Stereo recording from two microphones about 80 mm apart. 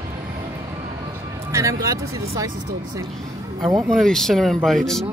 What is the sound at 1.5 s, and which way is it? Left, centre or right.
Speech, right.